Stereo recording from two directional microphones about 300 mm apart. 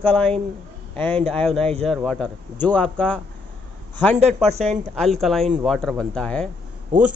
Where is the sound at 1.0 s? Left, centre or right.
Centre.